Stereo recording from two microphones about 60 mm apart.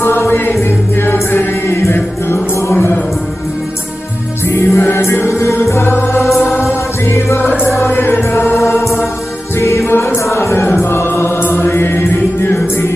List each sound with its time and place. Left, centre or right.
0.0 s music: left
2.7 s music: left
4.5 s music: left
10.1 s chant: left